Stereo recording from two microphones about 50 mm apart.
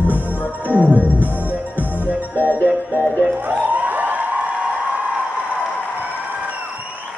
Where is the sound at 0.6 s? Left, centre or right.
Left.